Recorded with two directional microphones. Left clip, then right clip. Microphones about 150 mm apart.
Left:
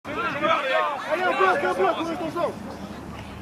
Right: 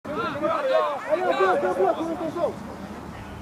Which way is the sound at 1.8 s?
30° left (ahead or behind).